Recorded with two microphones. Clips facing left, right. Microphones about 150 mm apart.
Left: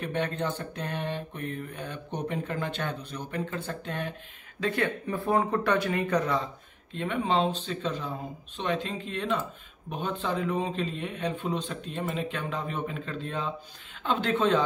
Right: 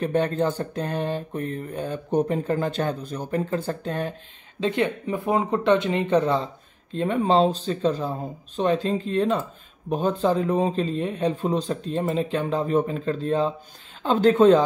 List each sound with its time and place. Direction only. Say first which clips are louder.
0.0 s mantra: right 8 dB; 40° right (ahead or behind)
4.6 s speech: right 5 dB; 20° right (ahead or behind)
8.5 s mantra: right 8 dB; 35° right (ahead or behind)